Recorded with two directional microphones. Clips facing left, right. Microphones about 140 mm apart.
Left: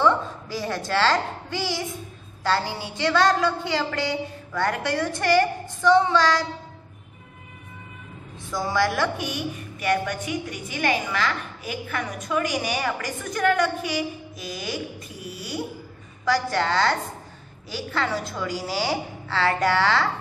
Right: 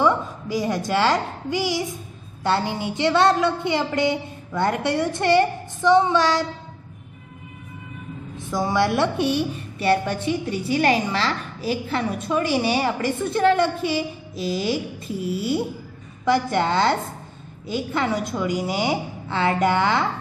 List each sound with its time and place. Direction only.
0.0 s a woman's voice: 15° right (ahead or behind)
8.5 s a woman's voice: 20° right (ahead or behind)